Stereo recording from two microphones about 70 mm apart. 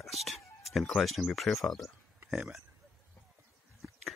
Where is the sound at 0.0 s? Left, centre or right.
Centre.